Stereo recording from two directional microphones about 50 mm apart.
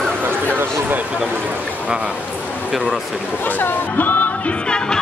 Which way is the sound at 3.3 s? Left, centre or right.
Left.